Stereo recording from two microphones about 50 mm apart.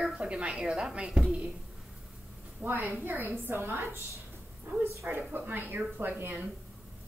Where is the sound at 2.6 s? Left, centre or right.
Right.